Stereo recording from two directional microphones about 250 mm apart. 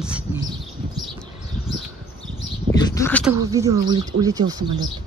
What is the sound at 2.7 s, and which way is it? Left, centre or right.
Speech, centre.